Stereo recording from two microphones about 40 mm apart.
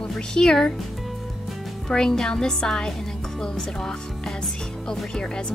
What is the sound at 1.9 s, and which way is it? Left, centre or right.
Speech, centre.